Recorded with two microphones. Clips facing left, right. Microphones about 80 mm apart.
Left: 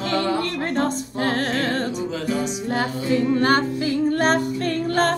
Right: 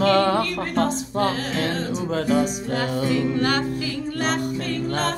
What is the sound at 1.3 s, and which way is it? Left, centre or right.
Music, left.